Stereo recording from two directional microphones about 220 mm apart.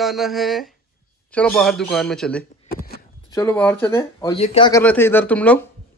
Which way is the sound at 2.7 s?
40° left (ahead or behind).